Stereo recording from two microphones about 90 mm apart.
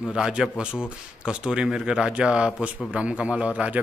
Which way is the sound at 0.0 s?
5° right (ahead or behind).